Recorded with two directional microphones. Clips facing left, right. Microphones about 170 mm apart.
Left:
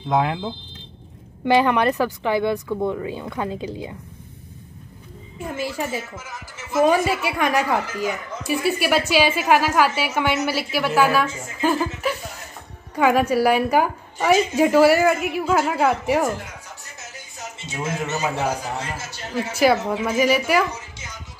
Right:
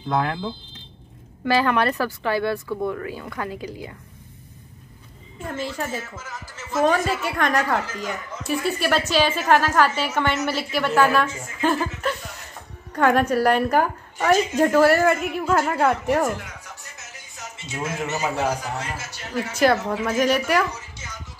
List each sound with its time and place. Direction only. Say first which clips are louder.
0.1 s speech: left 3 dB; 20° left (ahead or behind)
5.5 s a woman's voice: left 2 dB; 10° left (ahead or behind)
18.8 s speech: left 1 dB; 25° left (ahead or behind)
19.5 s speech: left 1 dB; 5° left (ahead or behind)
19.8 s speech: left 2 dB; 20° left (ahead or behind)
20.1 s speech: left 1 dB; 5° left (ahead or behind)